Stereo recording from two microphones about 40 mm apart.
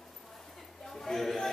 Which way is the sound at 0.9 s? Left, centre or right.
Centre.